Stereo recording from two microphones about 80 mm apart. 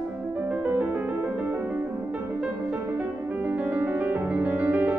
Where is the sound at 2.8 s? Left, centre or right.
Right.